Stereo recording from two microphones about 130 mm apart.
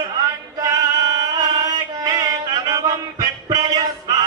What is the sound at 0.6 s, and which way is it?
Music, 25° right (ahead or behind).